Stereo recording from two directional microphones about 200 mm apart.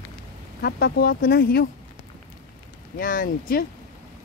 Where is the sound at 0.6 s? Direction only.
50° left (ahead or behind).